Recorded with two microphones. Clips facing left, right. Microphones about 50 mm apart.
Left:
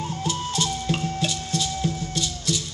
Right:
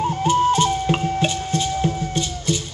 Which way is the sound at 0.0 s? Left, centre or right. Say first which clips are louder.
Right 11 dB; right.